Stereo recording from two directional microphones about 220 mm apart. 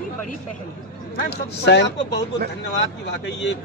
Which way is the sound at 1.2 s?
50° left (ahead or behind).